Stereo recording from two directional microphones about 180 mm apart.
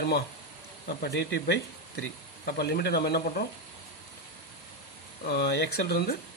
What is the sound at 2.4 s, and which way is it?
Speech, 60° left (ahead or behind).